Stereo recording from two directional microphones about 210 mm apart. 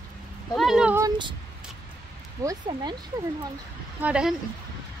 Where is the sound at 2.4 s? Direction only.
20° right (ahead or behind).